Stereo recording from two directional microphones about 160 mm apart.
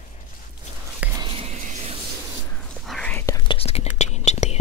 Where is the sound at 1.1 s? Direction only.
30° right (ahead or behind).